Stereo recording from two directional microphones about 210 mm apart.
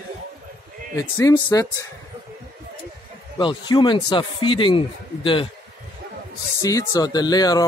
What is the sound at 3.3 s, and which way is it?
Speech, 20° left (ahead or behind).